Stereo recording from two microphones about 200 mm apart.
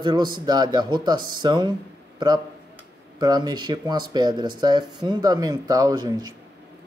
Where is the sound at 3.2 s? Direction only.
20° right (ahead or behind).